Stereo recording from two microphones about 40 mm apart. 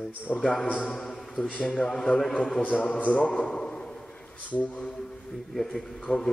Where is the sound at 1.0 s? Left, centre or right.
Centre.